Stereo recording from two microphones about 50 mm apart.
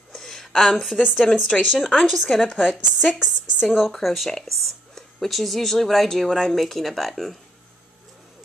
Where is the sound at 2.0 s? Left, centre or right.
Centre.